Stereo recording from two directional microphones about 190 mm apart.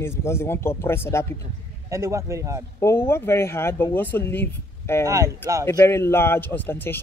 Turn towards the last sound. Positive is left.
turn(degrees=10)  # may be behind; listen again after turning